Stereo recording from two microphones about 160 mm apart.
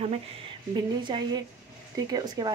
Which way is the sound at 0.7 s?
30° right (ahead or behind).